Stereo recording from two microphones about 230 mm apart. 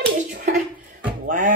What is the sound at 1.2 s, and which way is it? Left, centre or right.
Speech, right.